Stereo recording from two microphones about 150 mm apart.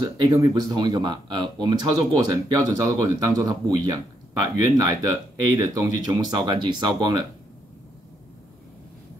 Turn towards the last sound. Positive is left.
turn(degrees=-30)  # may be behind; listen again after turning